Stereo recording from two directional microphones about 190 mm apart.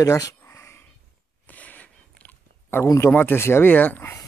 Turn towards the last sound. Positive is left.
turn(degrees=10)  # may be behind; listen again after turning